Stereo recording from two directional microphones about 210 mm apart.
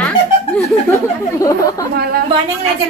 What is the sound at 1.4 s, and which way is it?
Speech, 15° left (ahead or behind).